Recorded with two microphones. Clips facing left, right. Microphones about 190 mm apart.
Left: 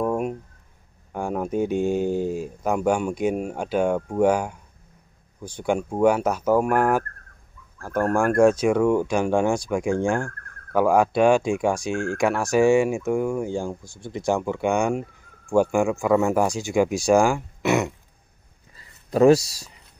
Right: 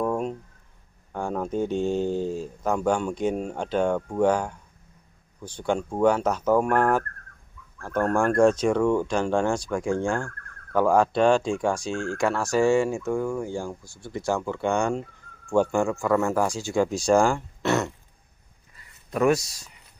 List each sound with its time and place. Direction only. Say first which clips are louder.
0.0 s a sound: left 2 dB; 10° left (ahead or behind)
1.1 s speech: left 2 dB; 10° left (ahead or behind)
19.0 s speech: left 6 dB; 30° left (ahead or behind)